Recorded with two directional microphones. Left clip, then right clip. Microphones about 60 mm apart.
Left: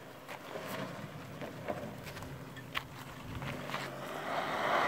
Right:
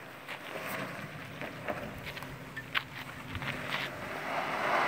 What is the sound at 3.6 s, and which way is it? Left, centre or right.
Vehicle, centre.